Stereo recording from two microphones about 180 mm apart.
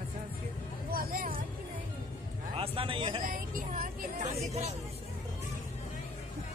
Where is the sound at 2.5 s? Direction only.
30° right (ahead or behind).